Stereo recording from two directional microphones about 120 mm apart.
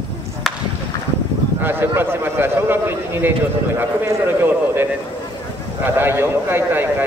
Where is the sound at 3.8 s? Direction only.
15° right (ahead or behind).